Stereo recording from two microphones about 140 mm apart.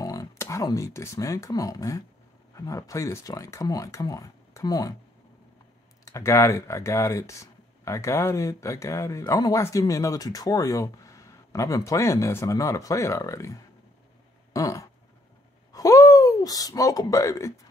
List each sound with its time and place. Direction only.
0.0 s speech: 25° left (ahead or behind)
6.0 s speech: 20° left (ahead or behind)
14.5 s a sound: 25° left (ahead or behind)
15.7 s speech: 25° left (ahead or behind)